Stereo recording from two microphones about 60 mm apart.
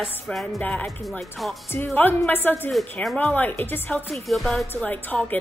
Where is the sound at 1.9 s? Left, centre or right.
Left.